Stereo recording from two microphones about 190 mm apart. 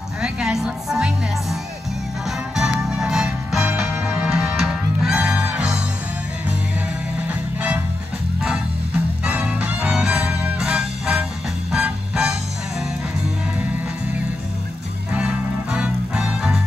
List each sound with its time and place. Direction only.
0.2 s music: 5° right (ahead or behind)
7.2 s music: 5° right (ahead or behind)
9.2 s music: 10° right (ahead or behind)
15.1 s music: 5° right (ahead or behind)